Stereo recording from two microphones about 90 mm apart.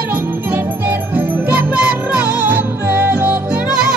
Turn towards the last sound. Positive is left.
turn(degrees=-15)  # may be behind; listen again after turning